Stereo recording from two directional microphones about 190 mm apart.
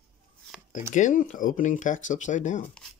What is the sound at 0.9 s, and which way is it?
Speech, 45° left (ahead or behind).